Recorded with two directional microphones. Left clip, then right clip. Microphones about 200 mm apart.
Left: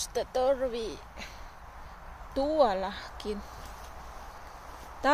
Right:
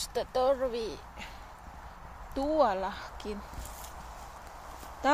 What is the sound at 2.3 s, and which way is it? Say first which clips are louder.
Speech: left 2 dB; 20° left (ahead or behind).